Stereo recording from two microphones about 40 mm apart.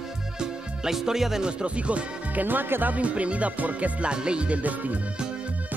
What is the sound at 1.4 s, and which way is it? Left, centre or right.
Speech, right.